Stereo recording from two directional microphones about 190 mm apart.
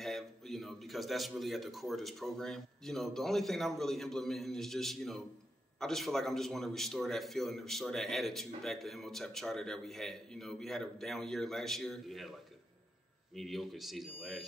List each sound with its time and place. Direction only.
0.0 s speech: centre (ahead or behind)